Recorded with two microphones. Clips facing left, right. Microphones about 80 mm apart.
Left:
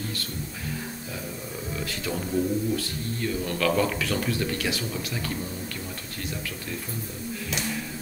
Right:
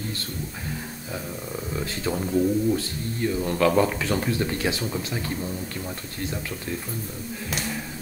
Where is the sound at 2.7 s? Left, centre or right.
Right.